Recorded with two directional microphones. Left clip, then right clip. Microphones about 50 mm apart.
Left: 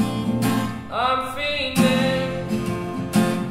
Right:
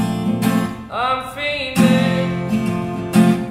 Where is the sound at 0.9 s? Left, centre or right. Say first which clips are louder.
Right 1 dB; centre.